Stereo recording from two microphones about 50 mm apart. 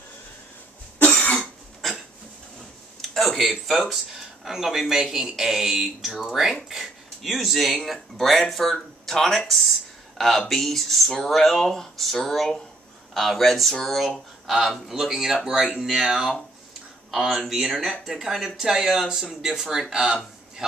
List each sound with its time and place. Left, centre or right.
0.9 s cough: left
3.0 s a man's voice: centre